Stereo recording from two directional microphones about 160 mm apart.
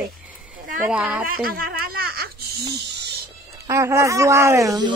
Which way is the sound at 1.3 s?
65° right (ahead or behind).